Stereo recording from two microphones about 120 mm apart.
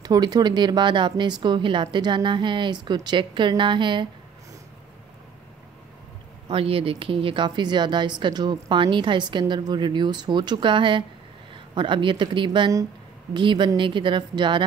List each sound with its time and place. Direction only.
0.0 s speech: 35° right (ahead or behind)
6.5 s speech: 50° right (ahead or behind)